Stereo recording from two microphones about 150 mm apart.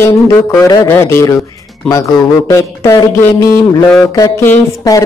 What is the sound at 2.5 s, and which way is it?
A man's voice, 20° left (ahead or behind).